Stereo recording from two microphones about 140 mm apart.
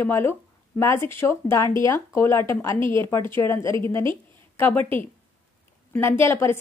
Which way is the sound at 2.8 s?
35° right (ahead or behind).